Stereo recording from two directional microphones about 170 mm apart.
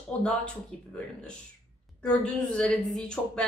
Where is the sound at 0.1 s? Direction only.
5° left (ahead or behind).